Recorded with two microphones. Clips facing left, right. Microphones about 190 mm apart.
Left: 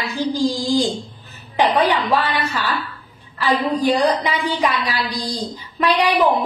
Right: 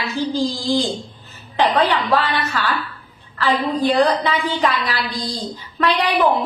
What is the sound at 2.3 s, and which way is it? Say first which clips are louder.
A woman's voice: even; 10° left (ahead or behind).